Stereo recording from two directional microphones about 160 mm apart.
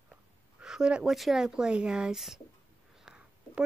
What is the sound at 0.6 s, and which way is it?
Speech, 5° right (ahead or behind).